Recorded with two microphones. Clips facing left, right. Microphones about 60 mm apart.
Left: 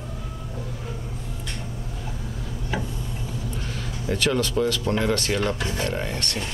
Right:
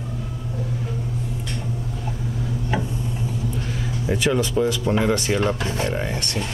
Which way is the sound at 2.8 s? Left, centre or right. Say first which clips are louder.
Right 5 dB; right.